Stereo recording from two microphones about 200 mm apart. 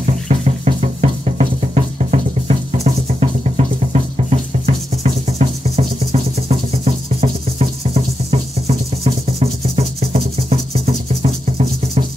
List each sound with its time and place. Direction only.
0.0 s music: 30° right (ahead or behind)